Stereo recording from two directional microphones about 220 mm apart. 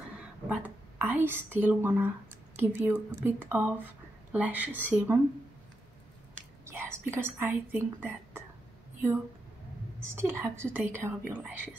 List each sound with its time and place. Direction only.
0.5 s speech: 5° right (ahead or behind)
6.6 s speech: 10° right (ahead or behind)
10.0 s speech: 10° right (ahead or behind)